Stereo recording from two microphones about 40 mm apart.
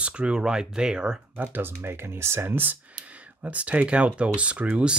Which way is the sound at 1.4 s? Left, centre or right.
Right.